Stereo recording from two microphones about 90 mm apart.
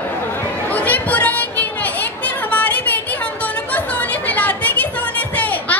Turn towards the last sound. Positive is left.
turn(degrees=20)  # may be behind; listen again after turning